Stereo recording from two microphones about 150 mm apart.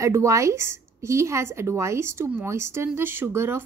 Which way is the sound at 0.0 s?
20° right (ahead or behind).